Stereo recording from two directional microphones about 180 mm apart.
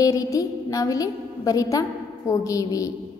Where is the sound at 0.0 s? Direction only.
20° left (ahead or behind).